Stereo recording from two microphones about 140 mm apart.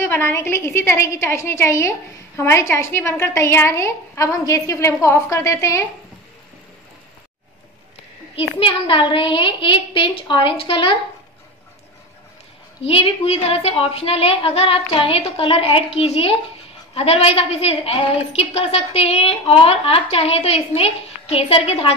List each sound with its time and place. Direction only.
0.0 s a woman's voice: 15° left (ahead or behind)
8.4 s a woman's voice: 40° left (ahead or behind)
12.8 s a woman's voice: 45° left (ahead or behind)